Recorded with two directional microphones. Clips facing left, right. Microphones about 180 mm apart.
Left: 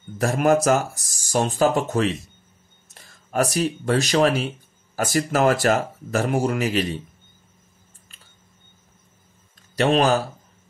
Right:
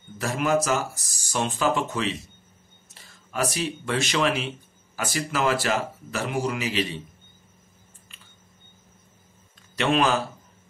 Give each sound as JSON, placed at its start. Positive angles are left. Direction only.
{"t": 0.2, "sound": "speech", "side_deg": 50}
{"t": 9.8, "sound": "speech", "side_deg": 40}